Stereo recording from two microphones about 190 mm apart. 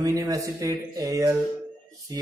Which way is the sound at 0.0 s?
20° right (ahead or behind).